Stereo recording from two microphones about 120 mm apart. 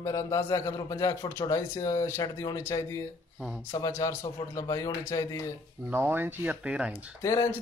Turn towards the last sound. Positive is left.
turn(degrees=25)  # may be behind; listen again after turning